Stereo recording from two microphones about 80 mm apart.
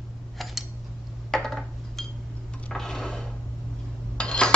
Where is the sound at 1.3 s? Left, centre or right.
Centre.